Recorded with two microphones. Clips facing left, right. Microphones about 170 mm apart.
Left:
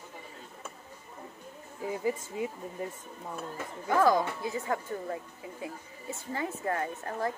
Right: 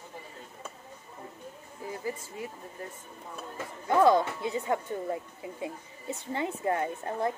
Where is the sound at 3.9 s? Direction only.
20° right (ahead or behind).